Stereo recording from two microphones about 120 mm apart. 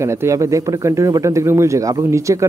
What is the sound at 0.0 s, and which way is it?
Speech, 25° right (ahead or behind).